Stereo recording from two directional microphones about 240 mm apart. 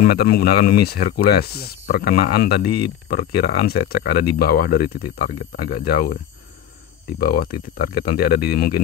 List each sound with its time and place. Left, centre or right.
0.0 s speech: left
7.2 s speech: left